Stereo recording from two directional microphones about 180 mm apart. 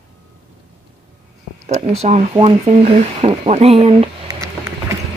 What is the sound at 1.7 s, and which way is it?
Speech, 35° right (ahead or behind).